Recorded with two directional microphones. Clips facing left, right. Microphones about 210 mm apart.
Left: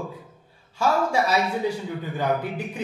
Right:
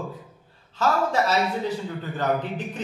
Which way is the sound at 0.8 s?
10° left (ahead or behind).